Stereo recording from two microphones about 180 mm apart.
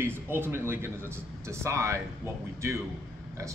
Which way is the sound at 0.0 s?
10° right (ahead or behind).